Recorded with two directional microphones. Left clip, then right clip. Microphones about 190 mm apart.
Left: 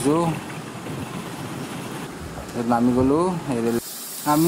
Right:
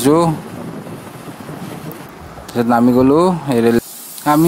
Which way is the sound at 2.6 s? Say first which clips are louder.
Right 7 dB; 30° right (ahead or behind).